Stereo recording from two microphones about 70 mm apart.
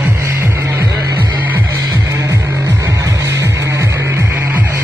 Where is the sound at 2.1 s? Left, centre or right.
Right.